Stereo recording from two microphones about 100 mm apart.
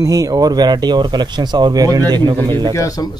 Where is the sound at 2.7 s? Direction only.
35° left (ahead or behind).